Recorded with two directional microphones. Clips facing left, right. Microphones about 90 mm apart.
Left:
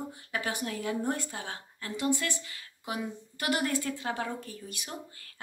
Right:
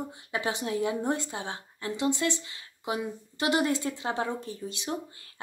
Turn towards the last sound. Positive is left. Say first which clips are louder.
# right 7 dB
turn(degrees=-25)  # may be behind; listen again after turning